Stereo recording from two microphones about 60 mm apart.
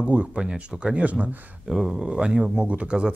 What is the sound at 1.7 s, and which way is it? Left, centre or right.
Speech, centre.